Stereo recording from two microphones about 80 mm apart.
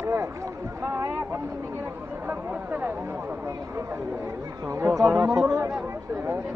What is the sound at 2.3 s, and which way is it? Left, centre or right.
Speech, right.